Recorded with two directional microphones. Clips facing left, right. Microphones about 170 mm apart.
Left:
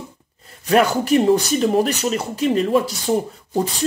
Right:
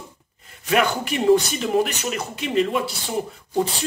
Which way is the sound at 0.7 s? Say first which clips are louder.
Left 5 dB; 40° left (ahead or behind).